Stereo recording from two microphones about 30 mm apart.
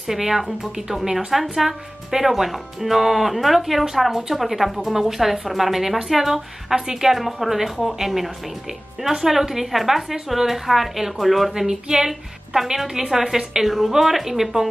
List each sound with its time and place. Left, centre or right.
0.0 s speech: centre
11.5 s speech: centre
13.7 s speech: centre